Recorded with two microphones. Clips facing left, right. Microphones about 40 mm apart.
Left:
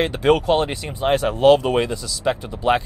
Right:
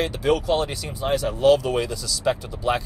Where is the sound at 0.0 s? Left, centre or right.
Left.